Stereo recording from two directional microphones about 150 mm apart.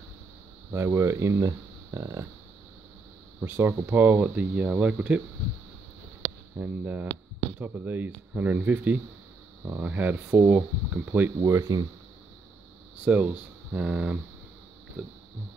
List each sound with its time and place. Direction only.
0.7 s speech: 20° right (ahead or behind)
3.3 s speech: 15° right (ahead or behind)
6.6 s speech: 10° right (ahead or behind)
13.0 s speech: 10° right (ahead or behind)
15.0 s pig: centre (ahead or behind)